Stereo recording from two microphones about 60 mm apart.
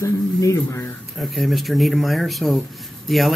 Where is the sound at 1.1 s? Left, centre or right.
Centre.